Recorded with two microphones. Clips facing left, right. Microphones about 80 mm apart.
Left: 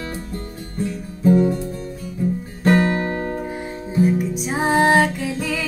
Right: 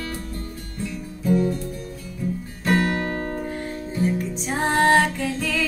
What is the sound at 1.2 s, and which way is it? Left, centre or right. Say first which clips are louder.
Music: left 5 dB; left.